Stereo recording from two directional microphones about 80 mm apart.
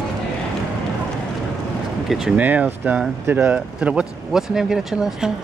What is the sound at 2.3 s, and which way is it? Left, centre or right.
Speech, centre.